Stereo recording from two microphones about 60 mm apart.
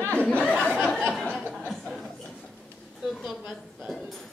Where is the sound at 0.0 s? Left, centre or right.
Left.